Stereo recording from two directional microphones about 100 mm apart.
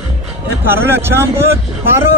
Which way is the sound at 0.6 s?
25° right (ahead or behind).